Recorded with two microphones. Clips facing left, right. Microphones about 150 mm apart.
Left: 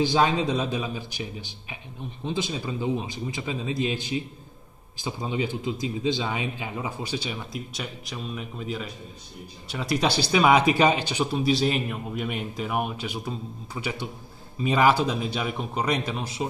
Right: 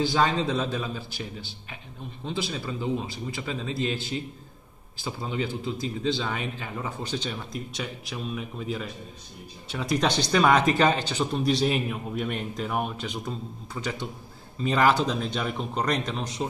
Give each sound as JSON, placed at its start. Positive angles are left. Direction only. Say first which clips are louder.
{"t": 0.0, "sound": "speech", "louder": "left 2 dB", "side_deg": 15}
{"t": 11.4, "sound": "a man's voice", "louder": "even", "side_deg": 0}